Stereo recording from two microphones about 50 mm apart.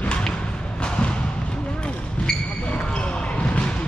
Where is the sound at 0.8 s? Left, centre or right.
Left.